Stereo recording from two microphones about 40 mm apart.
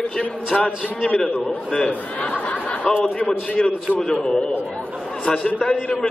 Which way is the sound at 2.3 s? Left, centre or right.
Left.